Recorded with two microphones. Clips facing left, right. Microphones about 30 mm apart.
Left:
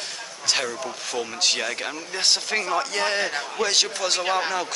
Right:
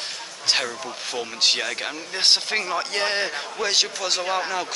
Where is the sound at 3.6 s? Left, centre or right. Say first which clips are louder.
Even; centre.